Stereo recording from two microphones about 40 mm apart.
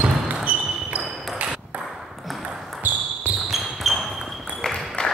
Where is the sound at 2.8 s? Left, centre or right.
Right.